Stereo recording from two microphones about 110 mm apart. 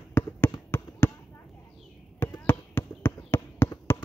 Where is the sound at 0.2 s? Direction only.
15° left (ahead or behind).